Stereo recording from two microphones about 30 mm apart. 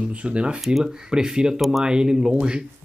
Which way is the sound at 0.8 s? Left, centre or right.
Right.